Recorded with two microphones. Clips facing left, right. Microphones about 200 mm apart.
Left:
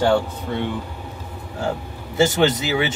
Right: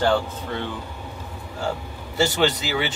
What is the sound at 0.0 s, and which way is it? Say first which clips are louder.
Speech: left 3 dB; 15° left (ahead or behind).